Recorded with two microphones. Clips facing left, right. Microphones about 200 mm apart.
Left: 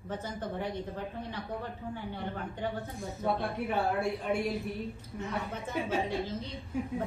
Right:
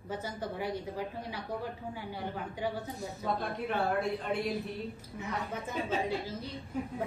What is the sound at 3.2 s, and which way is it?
Speech, 10° left (ahead or behind).